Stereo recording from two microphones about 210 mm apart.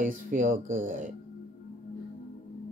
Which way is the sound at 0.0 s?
40° right (ahead or behind).